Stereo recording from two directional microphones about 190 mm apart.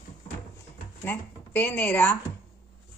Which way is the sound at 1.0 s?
10° left (ahead or behind).